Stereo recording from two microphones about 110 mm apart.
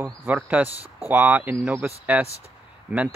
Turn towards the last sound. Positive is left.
turn(degrees=-15)  # may be behind; listen again after turning